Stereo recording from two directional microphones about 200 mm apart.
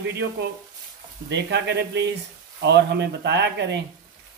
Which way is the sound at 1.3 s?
60° right (ahead or behind).